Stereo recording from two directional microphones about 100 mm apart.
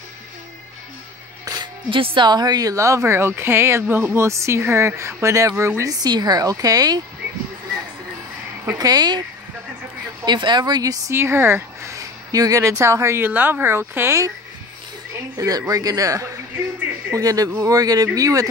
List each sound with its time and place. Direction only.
1.4 s music: 40° right (ahead or behind)
1.9 s a woman's voice: 60° right (ahead or behind); by 7.0 s 40° right (ahead or behind)
8.7 s a woman's voice: 40° right (ahead or behind)
10.2 s speech: 50° right (ahead or behind)
11.1 s speech: 25° right (ahead or behind)
15.3 s a woman's voice: 40° right (ahead or behind)